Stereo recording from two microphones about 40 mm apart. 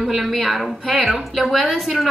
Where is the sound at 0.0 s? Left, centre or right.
Centre.